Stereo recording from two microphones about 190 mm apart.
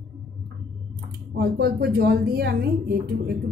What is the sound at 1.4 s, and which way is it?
A woman's voice, 55° right (ahead or behind).